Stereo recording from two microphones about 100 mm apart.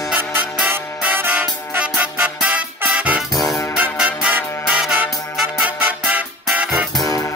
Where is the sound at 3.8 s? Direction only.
10° right (ahead or behind).